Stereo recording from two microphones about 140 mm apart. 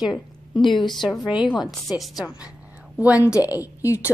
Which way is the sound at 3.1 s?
25° left (ahead or behind).